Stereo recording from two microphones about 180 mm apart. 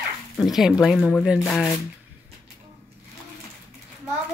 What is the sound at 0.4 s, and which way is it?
Speech, centre (ahead or behind).